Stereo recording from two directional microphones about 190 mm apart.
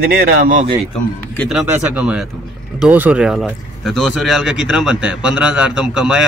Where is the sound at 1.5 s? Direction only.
5° right (ahead or behind).